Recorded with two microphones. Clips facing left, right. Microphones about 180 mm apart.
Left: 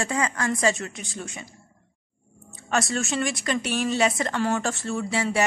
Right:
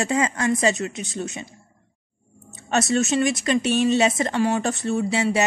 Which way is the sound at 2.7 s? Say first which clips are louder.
Right 5 dB; 20° right (ahead or behind).